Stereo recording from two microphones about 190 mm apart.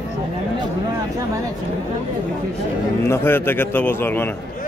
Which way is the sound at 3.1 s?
10° left (ahead or behind).